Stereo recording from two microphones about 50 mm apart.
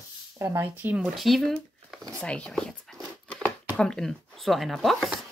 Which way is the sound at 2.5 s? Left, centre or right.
Centre.